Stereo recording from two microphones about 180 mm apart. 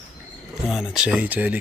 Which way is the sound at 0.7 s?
5° right (ahead or behind).